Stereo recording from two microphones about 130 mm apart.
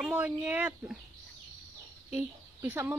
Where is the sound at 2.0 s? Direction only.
15° right (ahead or behind).